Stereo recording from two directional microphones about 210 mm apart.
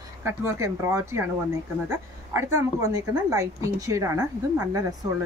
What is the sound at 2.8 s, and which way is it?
A woman's voice, 15° right (ahead or behind).